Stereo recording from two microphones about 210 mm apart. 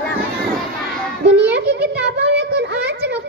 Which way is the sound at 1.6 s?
55° right (ahead or behind).